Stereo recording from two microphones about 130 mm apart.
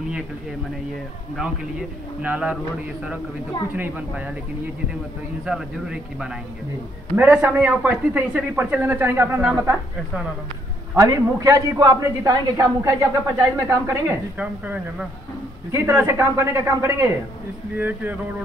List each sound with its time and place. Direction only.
1.3 s speech: 5° right (ahead or behind)
3.7 s speech: 15° right (ahead or behind)
5.4 s speech: 5° right (ahead or behind)
11.0 s a man's voice: 25° right (ahead or behind)
14.4 s speech: 10° right (ahead or behind)
15.7 s a man's voice: 20° right (ahead or behind)